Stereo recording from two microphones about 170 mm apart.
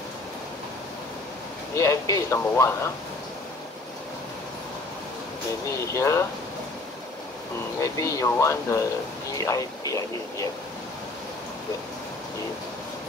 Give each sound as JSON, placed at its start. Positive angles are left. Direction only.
{"t": 1.8, "sound": "speech", "side_deg": 20}
{"t": 5.9, "sound": "speech", "side_deg": 15}
{"t": 7.8, "sound": "speech", "side_deg": 20}